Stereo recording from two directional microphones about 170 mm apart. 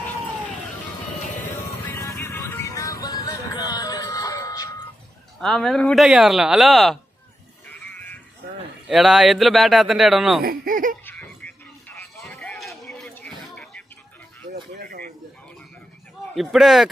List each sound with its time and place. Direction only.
1.9 s music: 20° left (ahead or behind)
5.4 s a man's voice: 5° left (ahead or behind)
7.6 s pig: 10° left (ahead or behind)
8.4 s a sound: 65° right (ahead or behind)
8.8 s a man's voice: centre (ahead or behind)
10.4 s speech: 60° right (ahead or behind)
11.1 s a sound: 10° left (ahead or behind)
13.4 s music: 5° left (ahead or behind)
14.7 s a sound: 60° right (ahead or behind)
16.3 s a man's voice: centre (ahead or behind)